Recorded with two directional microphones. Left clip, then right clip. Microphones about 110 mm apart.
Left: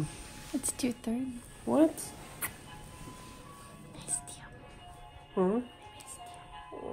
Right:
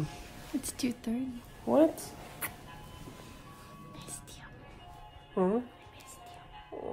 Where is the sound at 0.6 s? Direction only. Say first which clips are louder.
Left 2 dB; 30° left (ahead or behind).